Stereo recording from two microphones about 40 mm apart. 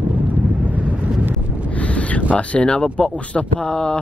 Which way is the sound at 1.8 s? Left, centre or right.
Left.